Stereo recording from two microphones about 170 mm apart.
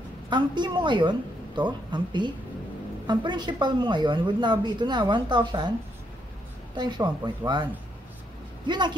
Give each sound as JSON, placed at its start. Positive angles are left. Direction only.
{"t": 0.3, "sound": "a woman's voice", "side_deg": -25}
{"t": 6.7, "sound": "a woman's voice", "side_deg": -25}
{"t": 8.6, "sound": "a woman's voice", "side_deg": -25}